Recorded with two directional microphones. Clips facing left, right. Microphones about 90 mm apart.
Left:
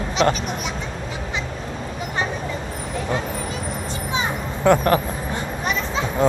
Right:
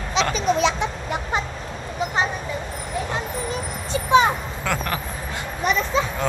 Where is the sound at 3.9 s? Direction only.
65° right (ahead or behind).